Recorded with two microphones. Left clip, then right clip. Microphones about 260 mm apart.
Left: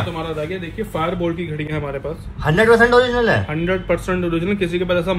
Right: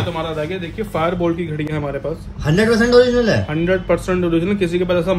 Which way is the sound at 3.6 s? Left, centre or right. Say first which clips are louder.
Right 5 dB; right.